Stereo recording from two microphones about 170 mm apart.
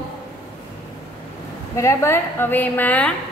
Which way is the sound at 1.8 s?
15° left (ahead or behind).